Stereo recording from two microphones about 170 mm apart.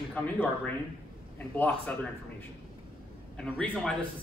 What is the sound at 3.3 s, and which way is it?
Speech, 5° left (ahead or behind).